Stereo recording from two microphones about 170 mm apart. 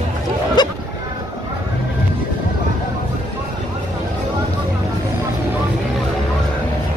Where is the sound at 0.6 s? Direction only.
25° left (ahead or behind).